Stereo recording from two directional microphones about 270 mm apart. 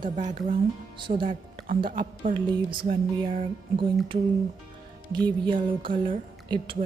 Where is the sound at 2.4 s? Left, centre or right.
Centre.